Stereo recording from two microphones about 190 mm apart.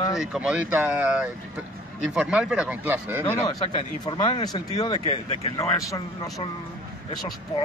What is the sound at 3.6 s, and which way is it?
Speech, 25° left (ahead or behind).